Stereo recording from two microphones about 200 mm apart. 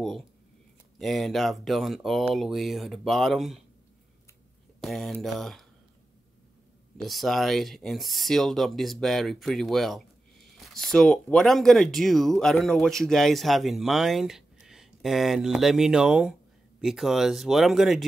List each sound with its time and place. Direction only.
0.9 s speech: centre (ahead or behind)
4.7 s speech: centre (ahead or behind)
7.0 s speech: centre (ahead or behind)